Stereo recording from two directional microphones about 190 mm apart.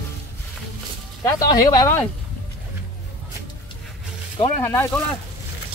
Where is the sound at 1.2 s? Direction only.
20° left (ahead or behind).